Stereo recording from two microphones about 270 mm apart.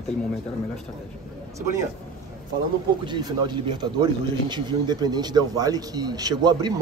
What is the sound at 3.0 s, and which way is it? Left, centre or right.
A man's voice, centre.